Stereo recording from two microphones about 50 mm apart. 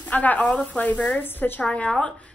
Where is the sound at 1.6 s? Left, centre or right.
Left.